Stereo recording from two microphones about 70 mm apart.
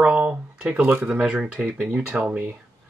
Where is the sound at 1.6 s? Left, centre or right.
Right.